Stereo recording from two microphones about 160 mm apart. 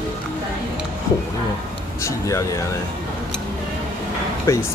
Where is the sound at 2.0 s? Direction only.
20° left (ahead or behind).